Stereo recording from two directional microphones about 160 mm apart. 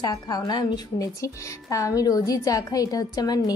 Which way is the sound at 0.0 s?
25° left (ahead or behind).